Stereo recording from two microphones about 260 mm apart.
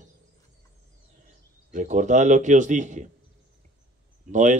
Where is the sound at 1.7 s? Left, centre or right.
Right.